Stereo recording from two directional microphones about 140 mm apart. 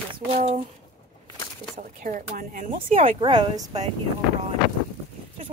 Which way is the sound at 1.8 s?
70° right (ahead or behind).